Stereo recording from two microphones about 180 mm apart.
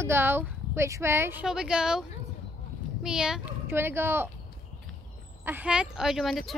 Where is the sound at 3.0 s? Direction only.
5° right (ahead or behind).